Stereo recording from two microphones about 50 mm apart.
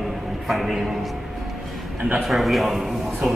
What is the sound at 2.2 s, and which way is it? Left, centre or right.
Music, centre.